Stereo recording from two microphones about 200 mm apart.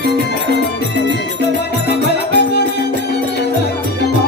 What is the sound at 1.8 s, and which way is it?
Music, 55° left (ahead or behind).